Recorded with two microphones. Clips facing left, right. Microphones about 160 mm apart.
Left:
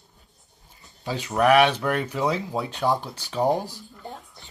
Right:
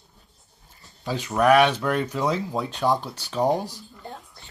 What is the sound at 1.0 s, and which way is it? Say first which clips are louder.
Speech: even; 15° left (ahead or behind).